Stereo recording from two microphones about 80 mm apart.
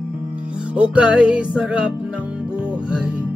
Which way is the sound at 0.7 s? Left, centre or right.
Centre.